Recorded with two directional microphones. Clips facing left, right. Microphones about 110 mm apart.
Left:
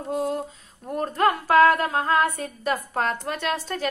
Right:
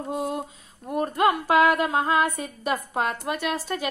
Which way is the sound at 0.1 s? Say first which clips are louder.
Left 3 dB; 20° right (ahead or behind).